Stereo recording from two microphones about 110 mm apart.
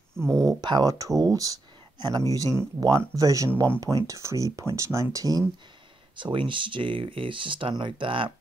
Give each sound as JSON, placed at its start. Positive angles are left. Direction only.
{"t": 0.4, "sound": "speech", "side_deg": -35}
{"t": 6.1, "sound": "speech", "side_deg": -50}